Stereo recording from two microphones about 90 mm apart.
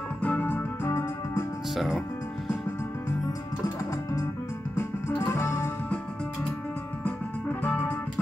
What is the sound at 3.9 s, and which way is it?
Music, 35° left (ahead or behind).